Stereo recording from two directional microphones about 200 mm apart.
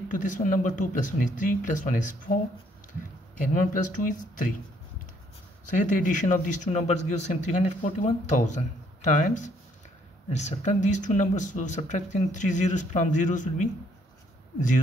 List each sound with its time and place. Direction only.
0.1 s speech: 40° left (ahead or behind)
3.3 s speech: 40° left (ahead or behind)
5.7 s speech: 40° left (ahead or behind)